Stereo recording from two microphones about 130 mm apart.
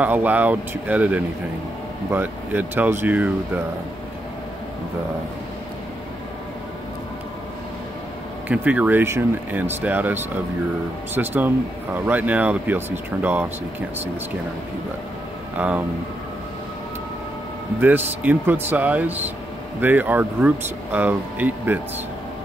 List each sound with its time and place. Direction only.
0.0 s speech: 15° right (ahead or behind)
8.5 s speech: 10° right (ahead or behind)
15.5 s speech: 10° right (ahead or behind)
17.7 s speech: 15° right (ahead or behind)